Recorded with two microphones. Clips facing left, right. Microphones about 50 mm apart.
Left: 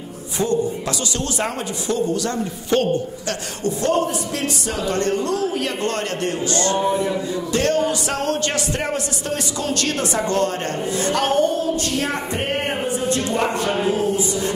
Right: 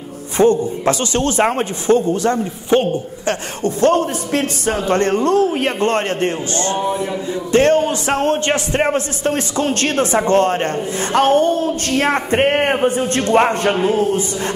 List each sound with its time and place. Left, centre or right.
0.4 s a man's voice: right
3.6 s a man's voice: right